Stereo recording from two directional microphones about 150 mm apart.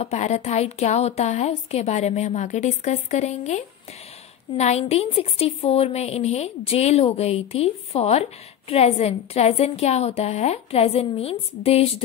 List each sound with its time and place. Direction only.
0.0 s a woman's voice: 45° left (ahead or behind)